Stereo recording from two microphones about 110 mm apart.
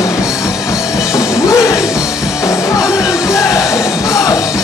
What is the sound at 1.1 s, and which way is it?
Music, 25° left (ahead or behind).